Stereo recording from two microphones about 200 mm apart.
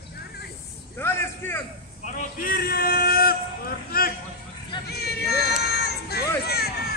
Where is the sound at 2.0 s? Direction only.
40° left (ahead or behind).